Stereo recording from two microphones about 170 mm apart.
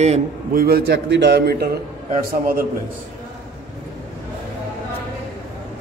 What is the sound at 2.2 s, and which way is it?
Speech, 60° right (ahead or behind).